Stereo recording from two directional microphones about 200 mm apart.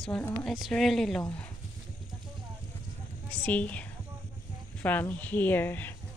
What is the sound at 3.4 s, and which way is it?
Speech, 5° left (ahead or behind).